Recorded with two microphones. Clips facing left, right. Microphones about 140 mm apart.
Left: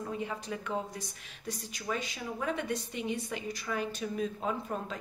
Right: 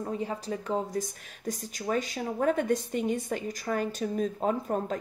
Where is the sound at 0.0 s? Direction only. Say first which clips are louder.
Right 4 dB; 35° right (ahead or behind).